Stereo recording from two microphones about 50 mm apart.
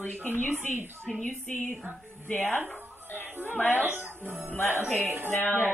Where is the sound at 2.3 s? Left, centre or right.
Left.